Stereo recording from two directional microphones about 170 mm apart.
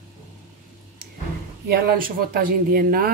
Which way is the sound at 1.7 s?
60° right (ahead or behind).